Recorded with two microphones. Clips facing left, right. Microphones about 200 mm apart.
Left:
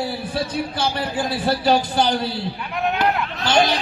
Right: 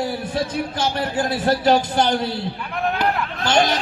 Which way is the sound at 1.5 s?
15° right (ahead or behind).